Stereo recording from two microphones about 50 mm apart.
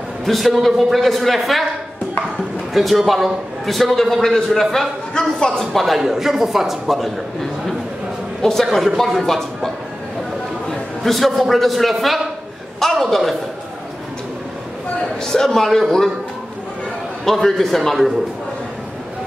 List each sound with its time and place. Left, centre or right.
0.2 s a man's voice: centre
2.7 s a man's voice: centre
8.4 s a man's voice: centre
10.7 s a man's voice: centre
15.2 s a man's voice: centre
17.2 s a man's voice: centre